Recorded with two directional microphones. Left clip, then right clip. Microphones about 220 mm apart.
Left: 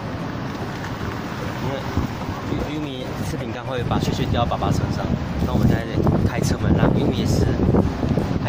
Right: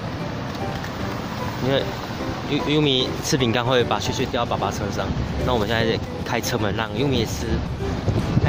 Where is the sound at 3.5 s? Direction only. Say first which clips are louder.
Right 4 dB; 35° right (ahead or behind).